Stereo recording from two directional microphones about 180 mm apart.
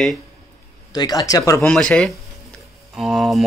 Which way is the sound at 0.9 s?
20° left (ahead or behind).